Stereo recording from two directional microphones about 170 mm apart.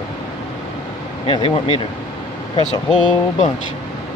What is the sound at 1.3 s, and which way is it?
Speech, 35° left (ahead or behind).